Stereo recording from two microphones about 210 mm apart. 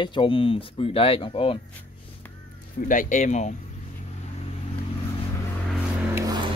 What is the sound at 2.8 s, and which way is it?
Speech, 40° left (ahead or behind).